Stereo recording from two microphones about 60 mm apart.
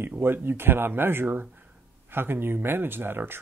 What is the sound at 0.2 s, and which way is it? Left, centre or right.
Speech, right.